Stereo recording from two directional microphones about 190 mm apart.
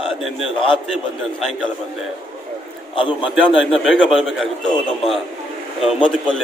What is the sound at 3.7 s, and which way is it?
Speech, centre (ahead or behind).